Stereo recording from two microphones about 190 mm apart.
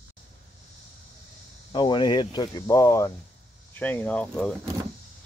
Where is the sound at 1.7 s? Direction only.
25° left (ahead or behind); by 4.5 s 5° left (ahead or behind).